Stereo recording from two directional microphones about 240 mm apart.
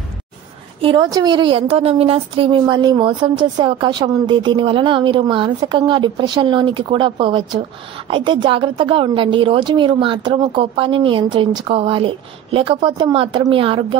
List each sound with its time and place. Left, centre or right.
0.7 s a woman's voice: right